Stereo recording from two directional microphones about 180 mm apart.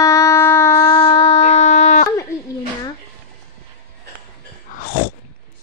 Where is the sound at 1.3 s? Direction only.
40° left (ahead or behind).